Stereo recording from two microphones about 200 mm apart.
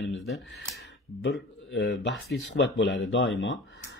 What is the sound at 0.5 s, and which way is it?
Speech, 65° left (ahead or behind).